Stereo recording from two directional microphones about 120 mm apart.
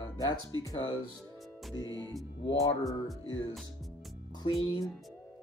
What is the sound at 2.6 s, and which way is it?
Speech, 30° left (ahead or behind).